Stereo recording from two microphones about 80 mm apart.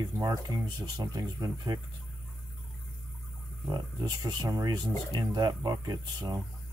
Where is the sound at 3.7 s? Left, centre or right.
Right.